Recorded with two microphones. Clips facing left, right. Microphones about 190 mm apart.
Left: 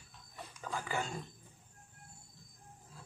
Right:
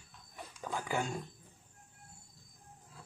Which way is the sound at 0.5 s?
15° right (ahead or behind).